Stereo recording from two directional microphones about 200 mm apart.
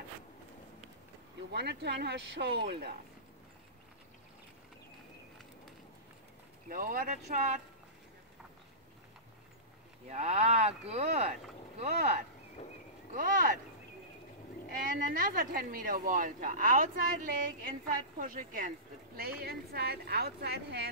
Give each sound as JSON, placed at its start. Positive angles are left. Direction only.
{"t": 1.5, "sound": "speech", "side_deg": -55}
{"t": 6.7, "sound": "speech", "side_deg": -45}
{"t": 10.0, "sound": "speech", "side_deg": -35}
{"t": 14.9, "sound": "speech", "side_deg": -45}